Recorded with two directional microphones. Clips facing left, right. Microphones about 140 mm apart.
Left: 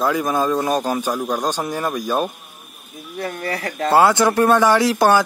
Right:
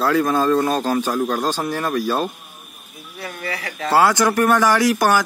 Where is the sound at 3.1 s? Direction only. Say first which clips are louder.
Left 4 dB; 45° left (ahead or behind).